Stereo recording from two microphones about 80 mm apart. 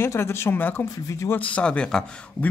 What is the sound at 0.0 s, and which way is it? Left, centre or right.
Speech, left.